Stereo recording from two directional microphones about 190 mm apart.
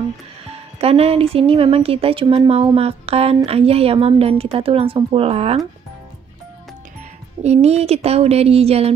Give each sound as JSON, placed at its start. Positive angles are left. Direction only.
{"t": 0.7, "sound": "speech", "side_deg": -30}
{"t": 7.4, "sound": "speech", "side_deg": -35}